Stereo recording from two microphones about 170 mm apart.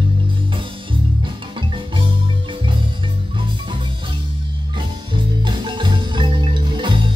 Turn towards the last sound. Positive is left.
turn(degrees=-30)  # may be behind; listen again after turning